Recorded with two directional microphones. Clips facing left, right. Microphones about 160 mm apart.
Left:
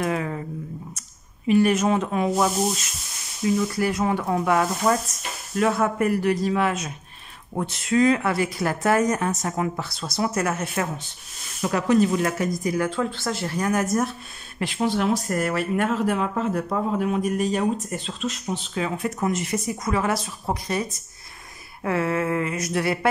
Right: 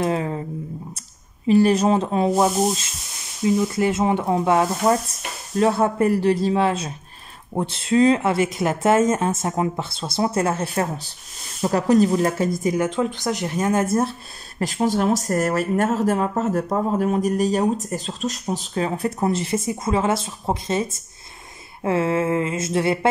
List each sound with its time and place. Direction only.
0.0 s speech: 30° right (ahead or behind)
1.5 s speech: 35° right (ahead or behind)
14.6 s speech: 40° right (ahead or behind); by 22.9 s 25° right (ahead or behind)